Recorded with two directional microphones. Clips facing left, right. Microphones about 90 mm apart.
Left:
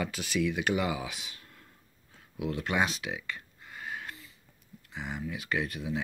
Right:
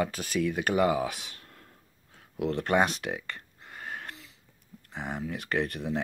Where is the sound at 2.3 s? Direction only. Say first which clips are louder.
Right 5 dB; 55° right (ahead or behind).